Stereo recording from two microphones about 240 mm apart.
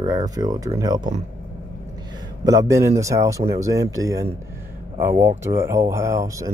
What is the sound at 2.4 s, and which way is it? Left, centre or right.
Speech, centre.